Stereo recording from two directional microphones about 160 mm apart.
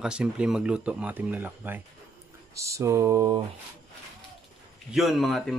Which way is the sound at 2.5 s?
20° right (ahead or behind).